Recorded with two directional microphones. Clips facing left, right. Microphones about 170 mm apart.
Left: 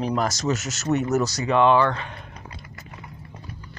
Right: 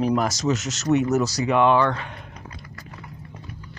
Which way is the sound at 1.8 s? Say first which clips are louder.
Even; centre (ahead or behind).